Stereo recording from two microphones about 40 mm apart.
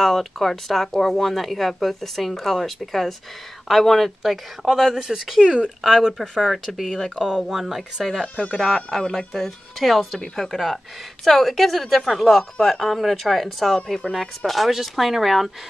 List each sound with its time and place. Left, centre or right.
0.0 s a woman's voice: centre
6.5 s a woman's voice: centre